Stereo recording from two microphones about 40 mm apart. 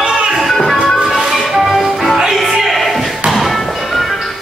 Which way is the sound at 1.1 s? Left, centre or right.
Centre.